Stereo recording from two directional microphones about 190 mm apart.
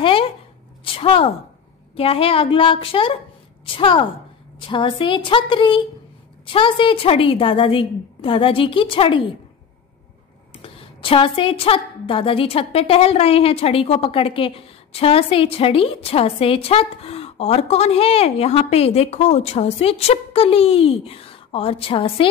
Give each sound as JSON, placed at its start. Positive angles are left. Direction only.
{"t": 0.0, "sound": "zipper", "side_deg": 30}
{"t": 0.8, "sound": "a woman's voice", "side_deg": 30}
{"t": 10.6, "sound": "a woman's voice", "side_deg": 25}